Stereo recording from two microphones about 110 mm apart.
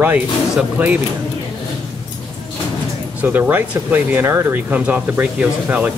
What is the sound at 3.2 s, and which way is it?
Speech, 15° right (ahead or behind).